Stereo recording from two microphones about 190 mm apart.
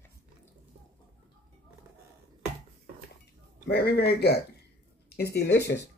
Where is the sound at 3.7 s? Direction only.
55° left (ahead or behind).